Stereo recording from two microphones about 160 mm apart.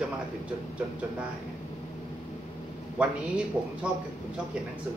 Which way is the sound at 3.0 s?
5° right (ahead or behind).